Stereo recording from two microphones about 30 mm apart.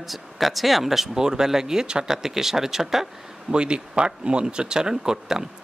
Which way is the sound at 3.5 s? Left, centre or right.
Right.